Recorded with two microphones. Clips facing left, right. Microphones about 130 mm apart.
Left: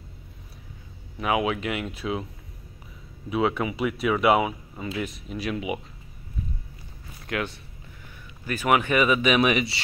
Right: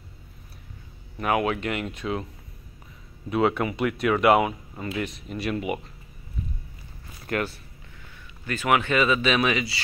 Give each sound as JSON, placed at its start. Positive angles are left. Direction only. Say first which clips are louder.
{"t": 1.1, "sound": "speech", "louder": "even", "side_deg": 5}
{"t": 3.3, "sound": "speech", "louder": "right 2 dB", "side_deg": 0}
{"t": 7.2, "sound": "speech", "louder": "right 2 dB", "side_deg": -5}
{"t": 8.5, "sound": "speech", "louder": "left 1 dB", "side_deg": 10}